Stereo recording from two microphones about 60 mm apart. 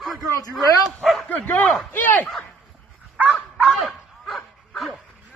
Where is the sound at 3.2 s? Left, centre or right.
Right.